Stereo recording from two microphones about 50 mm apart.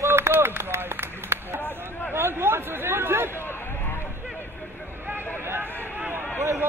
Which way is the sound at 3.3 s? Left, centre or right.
Left.